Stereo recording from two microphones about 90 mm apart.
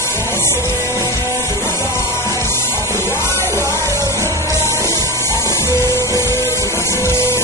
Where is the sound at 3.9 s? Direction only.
35° right (ahead or behind).